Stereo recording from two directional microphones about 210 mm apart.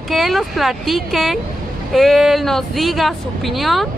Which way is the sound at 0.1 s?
Centre (ahead or behind).